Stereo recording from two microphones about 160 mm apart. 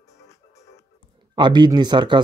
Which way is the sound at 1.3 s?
30° right (ahead or behind).